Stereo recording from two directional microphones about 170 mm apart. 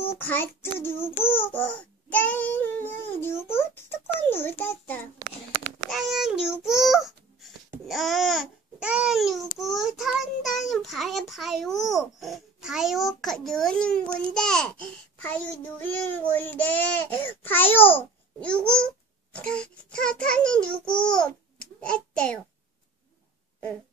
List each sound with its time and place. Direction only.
0.2 s babbling: 10° left (ahead or behind)
5.9 s babbling: centre (ahead or behind)